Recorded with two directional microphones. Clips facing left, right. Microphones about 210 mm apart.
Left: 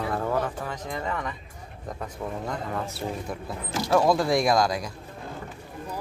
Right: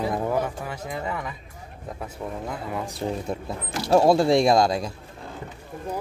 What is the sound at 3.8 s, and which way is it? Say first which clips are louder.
Speech: right 4 dB; 30° right (ahead or behind).